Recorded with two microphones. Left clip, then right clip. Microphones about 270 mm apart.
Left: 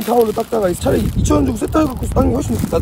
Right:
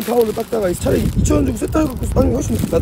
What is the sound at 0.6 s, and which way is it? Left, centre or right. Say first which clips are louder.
Speech: left 1 dB; centre.